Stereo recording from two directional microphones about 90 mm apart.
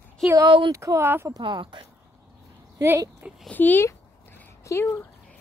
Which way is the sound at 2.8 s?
35° right (ahead or behind).